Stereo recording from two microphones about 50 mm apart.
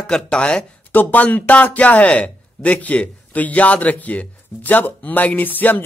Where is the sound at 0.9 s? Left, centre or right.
Left.